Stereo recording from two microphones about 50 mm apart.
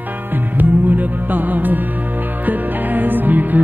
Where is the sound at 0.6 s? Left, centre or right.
Right.